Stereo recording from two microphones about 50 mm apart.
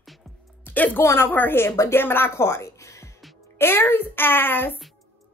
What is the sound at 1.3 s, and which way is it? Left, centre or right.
A woman's voice, left.